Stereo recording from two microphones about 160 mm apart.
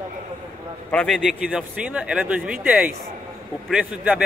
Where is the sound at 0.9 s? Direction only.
Centre (ahead or behind).